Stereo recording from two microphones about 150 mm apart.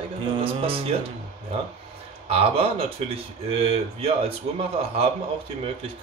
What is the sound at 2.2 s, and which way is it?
Speech, 40° right (ahead or behind).